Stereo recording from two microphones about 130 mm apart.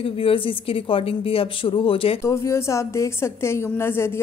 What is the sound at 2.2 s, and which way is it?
A woman's voice, 20° left (ahead or behind).